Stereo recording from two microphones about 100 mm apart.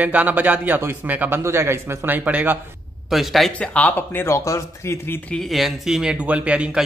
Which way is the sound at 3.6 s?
15° left (ahead or behind).